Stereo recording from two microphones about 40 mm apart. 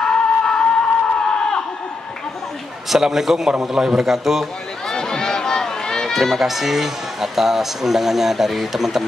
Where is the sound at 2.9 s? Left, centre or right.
Centre.